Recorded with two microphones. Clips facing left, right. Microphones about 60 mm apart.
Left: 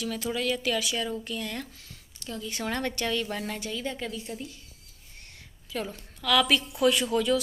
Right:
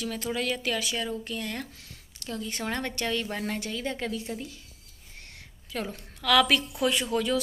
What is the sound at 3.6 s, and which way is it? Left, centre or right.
Speech, right.